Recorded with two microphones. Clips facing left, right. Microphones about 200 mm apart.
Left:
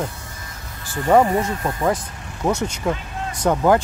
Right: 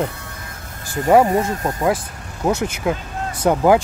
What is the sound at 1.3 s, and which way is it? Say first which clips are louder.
Speech: right 2 dB; 40° right (ahead or behind).